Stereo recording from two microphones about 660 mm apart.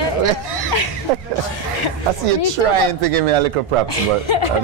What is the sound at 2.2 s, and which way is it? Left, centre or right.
Speech, right.